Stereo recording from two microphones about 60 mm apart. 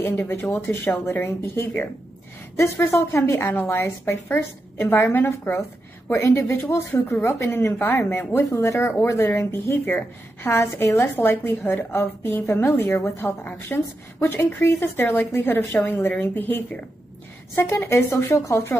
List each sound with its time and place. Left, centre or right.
0.0 s a woman's voice: left
7.8 s a woman's voice: left
8.5 s a woman's voice: left
9.8 s a woman's voice: left
10.5 s a woman's voice: left
13.4 s a woman's voice: left